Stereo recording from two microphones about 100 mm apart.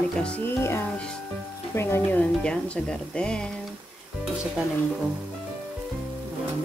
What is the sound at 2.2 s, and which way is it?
Speech, 10° left (ahead or behind).